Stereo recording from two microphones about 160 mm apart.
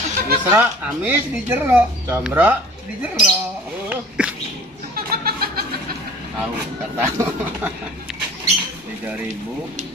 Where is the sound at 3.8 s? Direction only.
5° right (ahead or behind).